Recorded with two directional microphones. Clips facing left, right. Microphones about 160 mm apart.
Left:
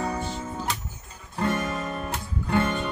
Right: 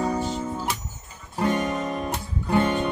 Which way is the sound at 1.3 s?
20° right (ahead or behind).